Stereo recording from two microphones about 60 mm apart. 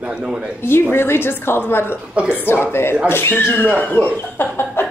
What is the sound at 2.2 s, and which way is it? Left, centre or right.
Speech, right.